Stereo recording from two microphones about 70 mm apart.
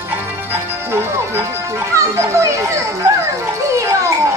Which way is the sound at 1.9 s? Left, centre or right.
Right.